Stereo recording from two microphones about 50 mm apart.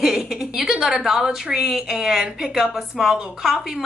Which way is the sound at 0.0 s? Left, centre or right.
Centre.